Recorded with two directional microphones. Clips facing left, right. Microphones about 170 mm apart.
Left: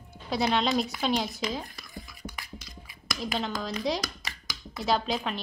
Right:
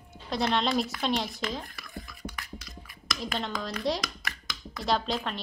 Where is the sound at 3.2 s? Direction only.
Centre (ahead or behind).